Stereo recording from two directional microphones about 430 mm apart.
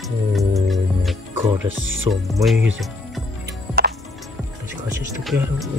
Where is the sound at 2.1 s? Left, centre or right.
Centre.